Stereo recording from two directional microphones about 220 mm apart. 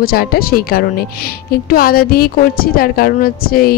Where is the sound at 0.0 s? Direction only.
45° left (ahead or behind).